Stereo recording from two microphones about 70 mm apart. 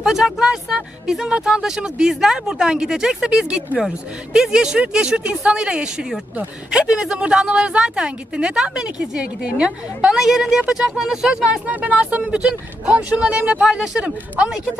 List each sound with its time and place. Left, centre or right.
0.0 s speech: centre